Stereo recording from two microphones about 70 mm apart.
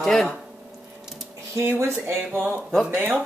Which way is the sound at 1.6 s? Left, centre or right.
Right.